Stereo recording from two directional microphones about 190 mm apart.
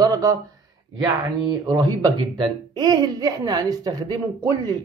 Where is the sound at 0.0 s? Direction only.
15° right (ahead or behind).